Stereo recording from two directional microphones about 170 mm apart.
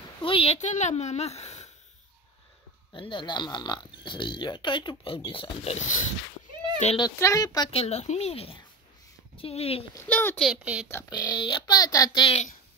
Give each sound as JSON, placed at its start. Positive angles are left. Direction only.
{"t": 0.2, "sound": "speech", "side_deg": 35}
{"t": 2.9, "sound": "speech", "side_deg": 30}
{"t": 7.0, "sound": "speech", "side_deg": 20}
{"t": 7.7, "sound": "speech", "side_deg": 35}
{"t": 9.9, "sound": "a child's voice", "side_deg": 10}
{"t": 10.5, "sound": "speech", "side_deg": -5}
{"t": 11.1, "sound": "speech", "side_deg": 25}